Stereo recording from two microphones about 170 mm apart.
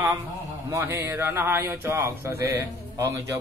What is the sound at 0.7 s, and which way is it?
A man's voice, 15° right (ahead or behind).